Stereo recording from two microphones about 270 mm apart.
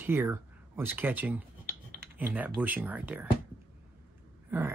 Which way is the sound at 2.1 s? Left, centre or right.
Centre.